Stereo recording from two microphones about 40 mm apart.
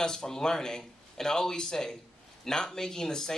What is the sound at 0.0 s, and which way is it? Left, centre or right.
Speech, centre.